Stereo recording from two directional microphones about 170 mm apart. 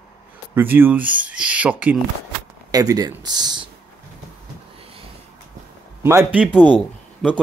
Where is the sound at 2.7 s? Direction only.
20° right (ahead or behind).